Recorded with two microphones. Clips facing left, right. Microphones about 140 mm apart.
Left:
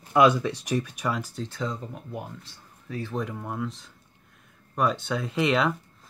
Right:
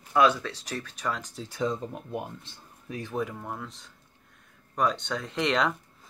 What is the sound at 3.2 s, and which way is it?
Speech, centre (ahead or behind).